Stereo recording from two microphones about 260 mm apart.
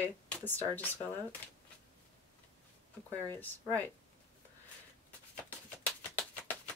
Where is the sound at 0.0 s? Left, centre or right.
Centre.